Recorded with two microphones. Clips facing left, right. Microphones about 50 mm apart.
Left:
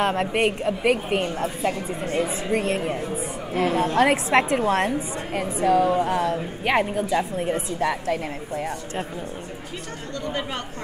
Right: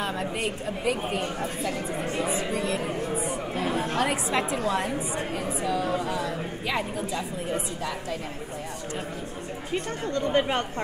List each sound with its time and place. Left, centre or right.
0.0 s a woman's voice: left
1.6 s speech: left
2.5 s a woman's voice: left
10.1 s speech: right